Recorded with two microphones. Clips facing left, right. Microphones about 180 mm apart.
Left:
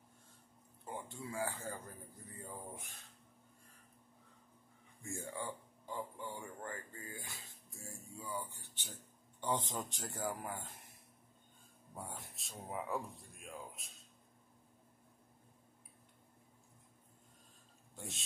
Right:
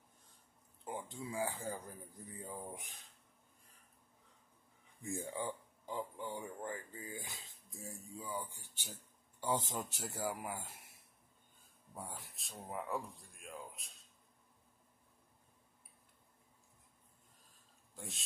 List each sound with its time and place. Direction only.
0.8 s speech: 15° right (ahead or behind)
5.0 s a sound: 15° right (ahead or behind)
9.4 s speech: 10° right (ahead or behind)
11.9 s a man's voice: centre (ahead or behind)
17.9 s speech: centre (ahead or behind)